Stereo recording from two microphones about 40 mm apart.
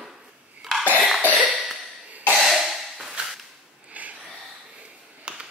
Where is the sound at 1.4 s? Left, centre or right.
Right.